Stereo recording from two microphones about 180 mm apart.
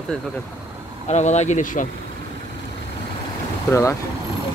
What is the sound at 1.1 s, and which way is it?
Speech, 40° left (ahead or behind).